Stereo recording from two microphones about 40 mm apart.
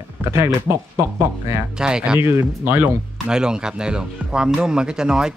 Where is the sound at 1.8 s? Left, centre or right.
Centre.